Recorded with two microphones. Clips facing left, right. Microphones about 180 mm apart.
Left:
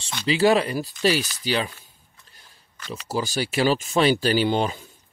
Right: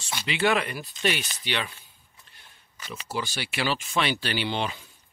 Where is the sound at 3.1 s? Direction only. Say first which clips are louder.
Left 7 dB; 40° left (ahead or behind).